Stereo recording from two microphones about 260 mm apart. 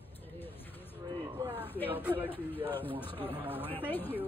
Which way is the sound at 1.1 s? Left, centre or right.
Centre.